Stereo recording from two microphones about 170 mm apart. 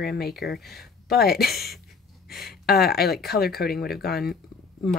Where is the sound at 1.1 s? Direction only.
65° left (ahead or behind).